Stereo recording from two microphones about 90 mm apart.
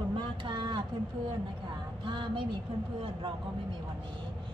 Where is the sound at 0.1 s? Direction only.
65° right (ahead or behind).